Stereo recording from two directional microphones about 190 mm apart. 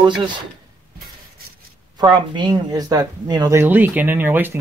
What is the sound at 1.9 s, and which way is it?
Speech, 25° right (ahead or behind).